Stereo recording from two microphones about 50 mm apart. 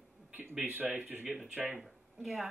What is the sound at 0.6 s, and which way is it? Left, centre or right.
Speech, right.